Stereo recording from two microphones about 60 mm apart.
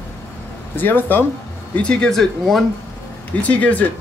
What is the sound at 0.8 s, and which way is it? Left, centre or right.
Speech, left.